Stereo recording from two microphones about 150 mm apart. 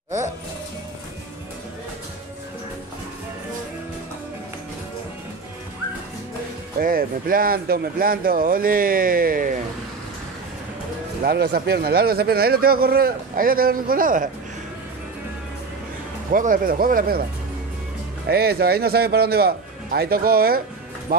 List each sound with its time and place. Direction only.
6.8 s speech: 70° right (ahead or behind)
11.2 s speech: 90° right; by 14.3 s 65° right (ahead or behind)
16.3 s speech: 65° right (ahead or behind); by 17.2 s 80° right
18.3 s speech: 90° right
21.1 s speech: 80° right